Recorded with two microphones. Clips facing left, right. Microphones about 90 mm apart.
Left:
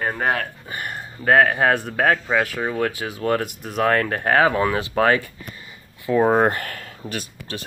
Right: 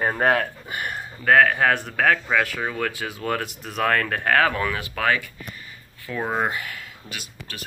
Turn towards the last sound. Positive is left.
turn(degrees=35)  # may be behind; listen again after turning